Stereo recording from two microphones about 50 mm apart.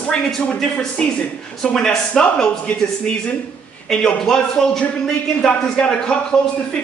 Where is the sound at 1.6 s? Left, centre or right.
Centre.